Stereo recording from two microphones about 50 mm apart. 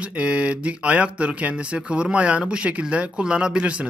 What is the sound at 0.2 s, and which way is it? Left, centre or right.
Speech, right.